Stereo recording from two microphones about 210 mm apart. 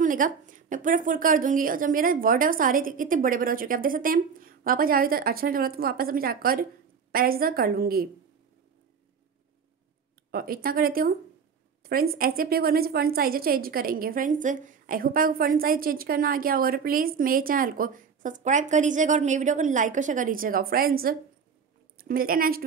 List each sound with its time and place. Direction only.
0.0 s a woman's voice: 40° right (ahead or behind)
10.3 s a woman's voice: 45° right (ahead or behind)